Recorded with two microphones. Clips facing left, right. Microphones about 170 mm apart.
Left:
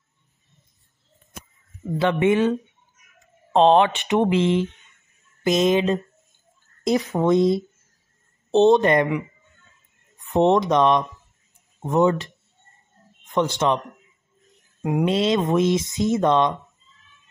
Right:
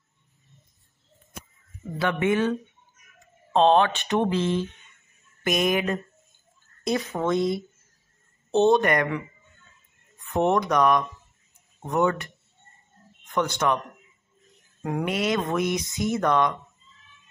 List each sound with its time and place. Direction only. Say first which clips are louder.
1.9 s speech: left 5 dB; 20° left (ahead or behind)
3.5 s speech: left 3 dB; 20° left (ahead or behind)
10.1 s a sound: left 5 dB; 20° left (ahead or behind)
10.7 s speech: left 3 dB; 25° left (ahead or behind)
14.8 s speech: left 6 dB; 20° left (ahead or behind)